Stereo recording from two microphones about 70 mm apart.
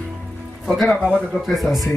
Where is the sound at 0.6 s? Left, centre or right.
Centre.